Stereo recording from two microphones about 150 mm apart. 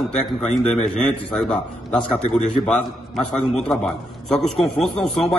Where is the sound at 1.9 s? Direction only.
50° left (ahead or behind).